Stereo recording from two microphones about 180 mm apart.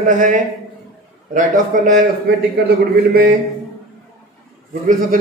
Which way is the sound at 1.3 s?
45° right (ahead or behind).